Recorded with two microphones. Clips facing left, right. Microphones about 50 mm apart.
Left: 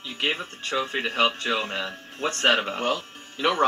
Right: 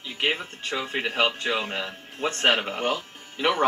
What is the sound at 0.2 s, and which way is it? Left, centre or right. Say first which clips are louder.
Speech: right 1 dB; right.